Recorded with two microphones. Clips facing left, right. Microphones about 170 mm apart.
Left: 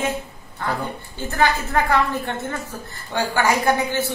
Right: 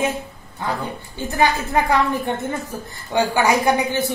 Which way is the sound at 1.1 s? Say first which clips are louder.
Right 1 dB; 15° right (ahead or behind).